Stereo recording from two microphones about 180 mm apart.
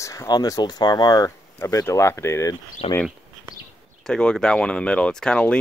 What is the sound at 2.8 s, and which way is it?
Speech, 35° left (ahead or behind).